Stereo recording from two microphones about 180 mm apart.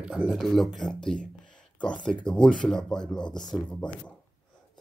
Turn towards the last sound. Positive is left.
turn(degrees=5)  # may be behind; listen again after turning